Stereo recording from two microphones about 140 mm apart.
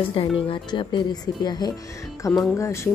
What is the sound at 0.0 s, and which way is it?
A woman's voice, 40° left (ahead or behind).